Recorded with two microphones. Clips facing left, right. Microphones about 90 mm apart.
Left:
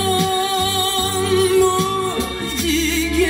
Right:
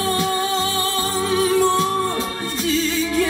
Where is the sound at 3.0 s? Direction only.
25° right (ahead or behind).